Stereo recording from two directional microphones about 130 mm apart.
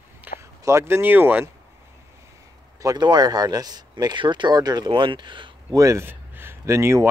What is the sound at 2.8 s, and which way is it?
Speech, 35° right (ahead or behind).